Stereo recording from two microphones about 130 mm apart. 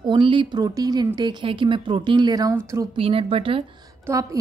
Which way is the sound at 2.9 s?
45° right (ahead or behind).